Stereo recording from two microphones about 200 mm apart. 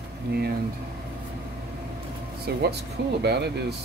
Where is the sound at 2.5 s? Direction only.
50° right (ahead or behind).